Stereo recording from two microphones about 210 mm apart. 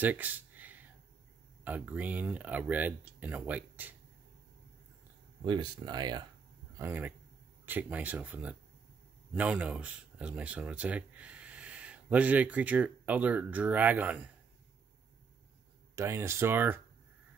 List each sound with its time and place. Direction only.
0.0 s a sound: 10° right (ahead or behind)
1.6 s speech: 10° right (ahead or behind)
5.4 s speech: 20° right (ahead or behind)
6.8 s speech: 10° right (ahead or behind)
16.0 s speech: 10° right (ahead or behind)